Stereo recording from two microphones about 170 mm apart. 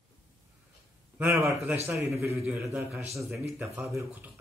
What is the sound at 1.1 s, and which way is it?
A man's voice, 5° right (ahead or behind).